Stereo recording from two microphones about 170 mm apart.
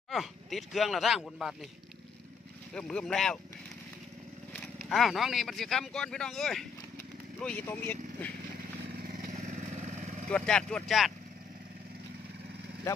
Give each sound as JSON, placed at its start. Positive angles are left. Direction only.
{"t": 0.1, "sound": "speech", "side_deg": 0}
{"t": 2.7, "sound": "speech", "side_deg": 5}
{"t": 4.6, "sound": "speech", "side_deg": 0}
{"t": 8.9, "sound": "vehicle", "side_deg": -55}
{"t": 10.3, "sound": "speech", "side_deg": 5}